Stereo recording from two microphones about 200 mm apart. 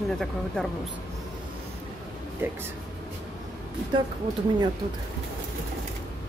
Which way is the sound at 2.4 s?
10° right (ahead or behind).